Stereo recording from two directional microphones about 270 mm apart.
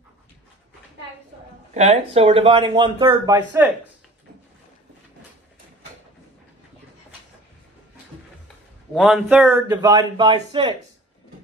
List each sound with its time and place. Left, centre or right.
1.7 s speech: right
8.9 s a man's voice: centre